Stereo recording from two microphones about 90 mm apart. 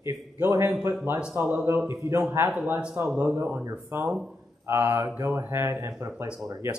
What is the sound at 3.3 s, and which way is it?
Speech, 25° right (ahead or behind).